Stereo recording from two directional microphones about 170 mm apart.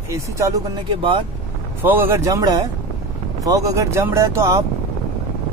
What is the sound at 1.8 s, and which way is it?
Speech, 10° right (ahead or behind).